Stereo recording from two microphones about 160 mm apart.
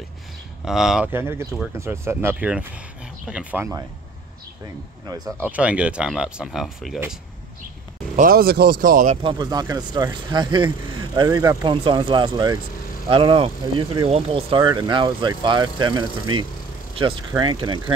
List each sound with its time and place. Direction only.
0.7 s speech: 5° right (ahead or behind)
5.4 s speech: 10° right (ahead or behind)
8.2 s speech: 70° right (ahead or behind)
9.1 s speech: 30° right (ahead or behind)